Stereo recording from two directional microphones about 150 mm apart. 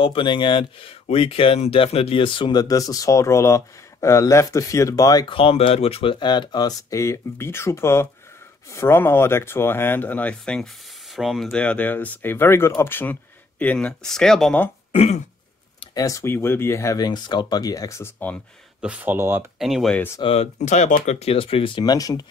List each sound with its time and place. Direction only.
0.0 s speech: 35° left (ahead or behind)
5.2 s speech: 35° left (ahead or behind); by 14.7 s 5° left (ahead or behind)
15.8 s speech: 25° left (ahead or behind)
18.8 s speech: 10° right (ahead or behind)
19.6 s speech: centre (ahead or behind)
20.2 s speech: 40° left (ahead or behind); by 22.2 s 25° left (ahead or behind)